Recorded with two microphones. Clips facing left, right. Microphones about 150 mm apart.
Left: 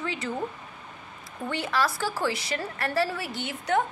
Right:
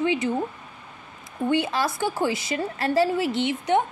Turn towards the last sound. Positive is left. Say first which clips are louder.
# right 6 dB
turn(degrees=-25)  # may be behind; listen again after turning